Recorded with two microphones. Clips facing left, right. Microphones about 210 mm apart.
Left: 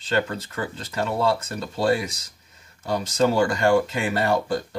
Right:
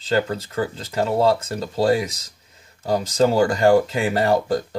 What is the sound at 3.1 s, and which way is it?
Speech, 35° right (ahead or behind).